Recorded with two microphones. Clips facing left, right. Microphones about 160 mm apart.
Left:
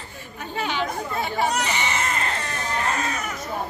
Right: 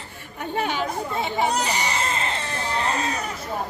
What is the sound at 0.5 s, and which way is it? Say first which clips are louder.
Speech: right 2 dB; 50° right (ahead or behind).